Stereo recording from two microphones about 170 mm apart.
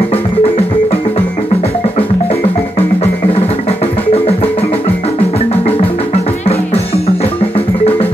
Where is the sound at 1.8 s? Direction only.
35° left (ahead or behind).